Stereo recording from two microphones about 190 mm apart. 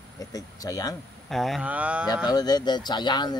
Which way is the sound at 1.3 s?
Centre (ahead or behind).